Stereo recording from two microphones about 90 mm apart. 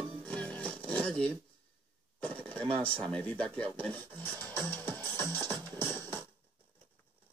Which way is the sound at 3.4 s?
15° left (ahead or behind).